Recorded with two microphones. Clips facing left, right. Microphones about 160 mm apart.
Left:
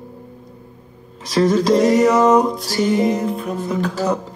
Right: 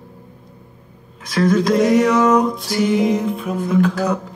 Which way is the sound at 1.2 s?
25° left (ahead or behind).